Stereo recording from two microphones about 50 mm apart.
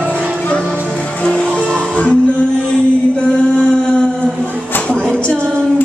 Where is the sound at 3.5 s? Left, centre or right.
Centre.